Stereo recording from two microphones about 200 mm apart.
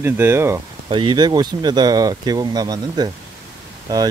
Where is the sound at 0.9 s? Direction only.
25° right (ahead or behind).